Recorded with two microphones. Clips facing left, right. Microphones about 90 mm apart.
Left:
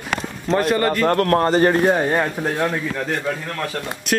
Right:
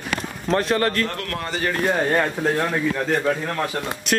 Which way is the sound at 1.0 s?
45° left (ahead or behind).